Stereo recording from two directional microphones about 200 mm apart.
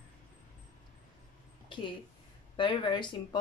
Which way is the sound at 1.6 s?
25° left (ahead or behind).